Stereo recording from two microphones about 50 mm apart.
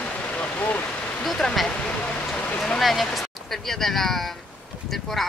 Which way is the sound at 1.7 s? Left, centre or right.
Left.